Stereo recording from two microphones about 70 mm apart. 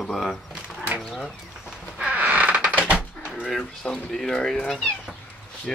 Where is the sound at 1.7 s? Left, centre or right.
Centre.